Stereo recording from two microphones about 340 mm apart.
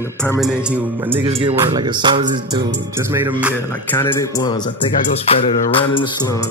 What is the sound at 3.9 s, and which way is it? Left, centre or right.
Music, centre.